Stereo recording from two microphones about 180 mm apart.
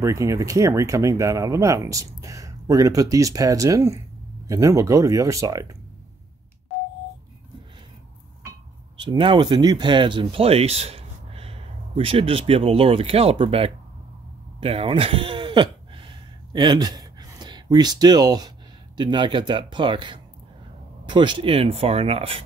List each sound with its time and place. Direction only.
0.0 s speech: 15° right (ahead or behind)
9.0 s speech: 25° right (ahead or behind)
14.6 s a sound: 30° right (ahead or behind)
18.9 s speech: 25° right (ahead or behind)